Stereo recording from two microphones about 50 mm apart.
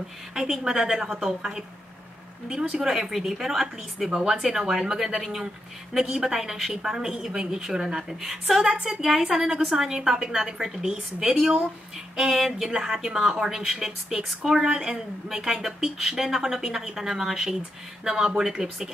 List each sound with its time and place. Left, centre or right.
0.3 s speech: centre
2.8 s a woman's voice: centre